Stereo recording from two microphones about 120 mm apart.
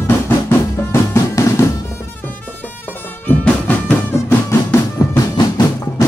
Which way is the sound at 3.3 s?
15° left (ahead or behind).